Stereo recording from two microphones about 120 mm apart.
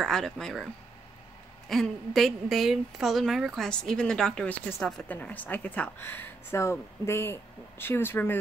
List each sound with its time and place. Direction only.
0.0 s a woman's voice: 5° left (ahead or behind)
1.7 s a woman's voice: centre (ahead or behind); by 8.4 s 15° left (ahead or behind)